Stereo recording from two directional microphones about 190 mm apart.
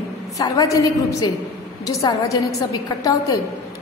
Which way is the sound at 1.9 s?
15° left (ahead or behind).